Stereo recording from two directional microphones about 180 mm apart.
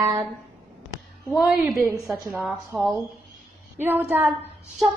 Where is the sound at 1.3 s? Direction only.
Centre (ahead or behind).